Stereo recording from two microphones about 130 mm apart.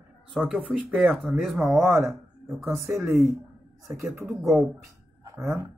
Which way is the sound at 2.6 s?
15° right (ahead or behind).